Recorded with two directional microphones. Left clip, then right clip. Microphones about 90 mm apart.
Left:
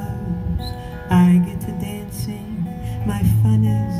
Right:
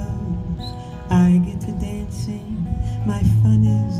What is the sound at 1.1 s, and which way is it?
Music, 20° right (ahead or behind).